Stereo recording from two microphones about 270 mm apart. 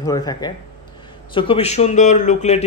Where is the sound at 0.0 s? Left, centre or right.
Centre.